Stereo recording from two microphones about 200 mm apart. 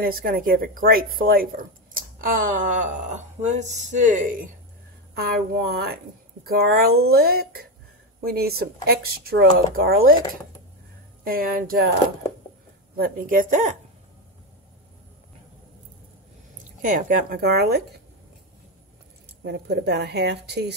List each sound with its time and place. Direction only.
0.0 s speech: 45° right (ahead or behind)
5.1 s speech: 50° right (ahead or behind)
11.2 s speech: 45° right (ahead or behind)
12.9 s speech: 45° right (ahead or behind)
16.8 s speech: 40° right (ahead or behind)
19.4 s a woman's voice: 55° right (ahead or behind)